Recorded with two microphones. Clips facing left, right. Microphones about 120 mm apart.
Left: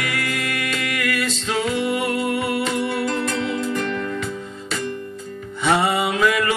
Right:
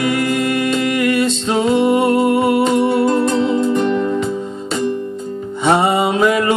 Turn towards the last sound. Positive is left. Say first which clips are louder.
# right 5 dB
turn(degrees=-25)  # may be behind; listen again after turning